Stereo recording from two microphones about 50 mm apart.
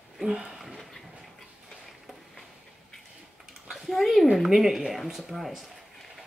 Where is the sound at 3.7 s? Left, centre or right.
Centre.